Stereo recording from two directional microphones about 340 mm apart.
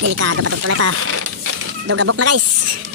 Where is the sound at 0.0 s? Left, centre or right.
Right.